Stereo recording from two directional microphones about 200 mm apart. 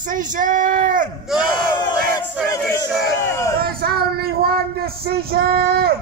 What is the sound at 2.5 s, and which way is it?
Speech, 15° left (ahead or behind).